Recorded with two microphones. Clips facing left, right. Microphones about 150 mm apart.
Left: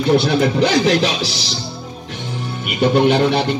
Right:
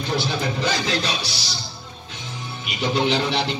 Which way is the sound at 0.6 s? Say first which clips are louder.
Left 9 dB; 75° left (ahead or behind).